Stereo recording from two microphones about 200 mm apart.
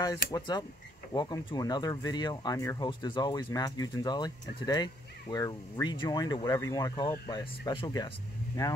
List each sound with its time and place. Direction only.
0.3 s speech: 20° left (ahead or behind)